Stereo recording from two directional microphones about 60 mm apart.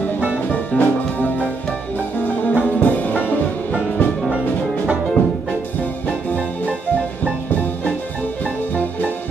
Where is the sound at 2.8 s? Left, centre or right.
Left.